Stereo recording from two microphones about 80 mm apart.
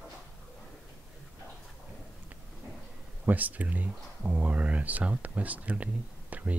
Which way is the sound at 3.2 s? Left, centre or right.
Right.